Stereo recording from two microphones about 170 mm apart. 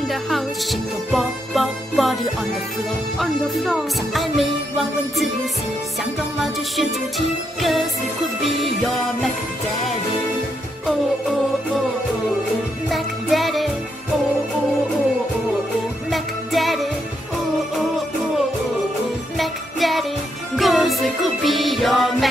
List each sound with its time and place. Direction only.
0.1 s music: centre (ahead or behind)
3.2 s music: centre (ahead or behind)
6.4 s music: centre (ahead or behind)
12.9 s music: centre (ahead or behind)
16.1 s music: centre (ahead or behind)
19.3 s music: centre (ahead or behind)